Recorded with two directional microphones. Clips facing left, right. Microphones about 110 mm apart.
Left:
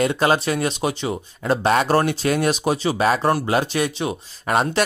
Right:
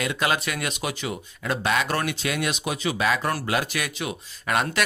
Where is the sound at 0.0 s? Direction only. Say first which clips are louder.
Left 7 dB; 35° left (ahead or behind).